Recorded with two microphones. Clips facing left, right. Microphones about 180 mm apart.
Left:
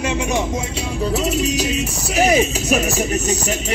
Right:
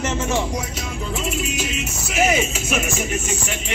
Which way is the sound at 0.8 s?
40° left (ahead or behind).